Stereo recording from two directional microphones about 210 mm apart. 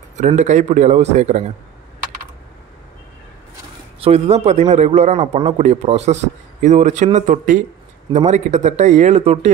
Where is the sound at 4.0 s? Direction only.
30° right (ahead or behind).